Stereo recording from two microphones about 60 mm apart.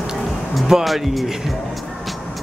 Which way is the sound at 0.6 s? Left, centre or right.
Centre.